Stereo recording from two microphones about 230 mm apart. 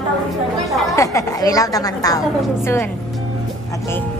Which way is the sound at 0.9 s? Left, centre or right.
Centre.